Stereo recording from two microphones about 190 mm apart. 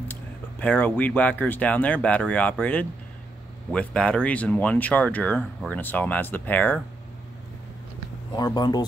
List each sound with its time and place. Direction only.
0.1 s speech: 10° left (ahead or behind)
8.4 s speech: 20° left (ahead or behind)